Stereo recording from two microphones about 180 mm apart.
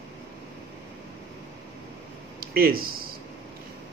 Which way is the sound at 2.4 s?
55° right (ahead or behind).